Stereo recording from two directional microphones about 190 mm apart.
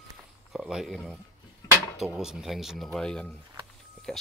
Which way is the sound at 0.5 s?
Centre (ahead or behind).